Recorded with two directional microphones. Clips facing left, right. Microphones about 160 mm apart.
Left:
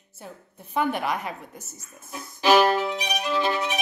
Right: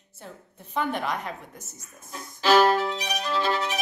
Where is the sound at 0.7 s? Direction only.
10° left (ahead or behind).